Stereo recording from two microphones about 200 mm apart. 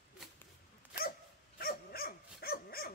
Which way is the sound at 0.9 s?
50° left (ahead or behind).